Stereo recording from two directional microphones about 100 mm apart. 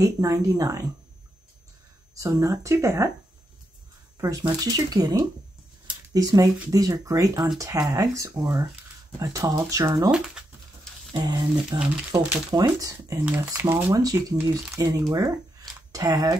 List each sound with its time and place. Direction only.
0.0 s a woman's voice: 35° right (ahead or behind)
2.1 s a woman's voice: 30° right (ahead or behind)
4.2 s a woman's voice: 35° right (ahead or behind)
6.1 s a woman's voice: 35° right (ahead or behind)
11.1 s a woman's voice: 40° right (ahead or behind)
13.4 s speech: 25° right (ahead or behind)
13.9 s a woman's voice: 35° right (ahead or behind)